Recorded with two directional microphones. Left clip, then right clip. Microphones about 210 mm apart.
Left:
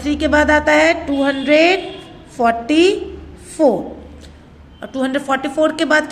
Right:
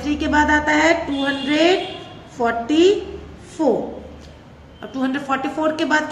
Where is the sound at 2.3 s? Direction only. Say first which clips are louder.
Left 4 dB; 40° left (ahead or behind).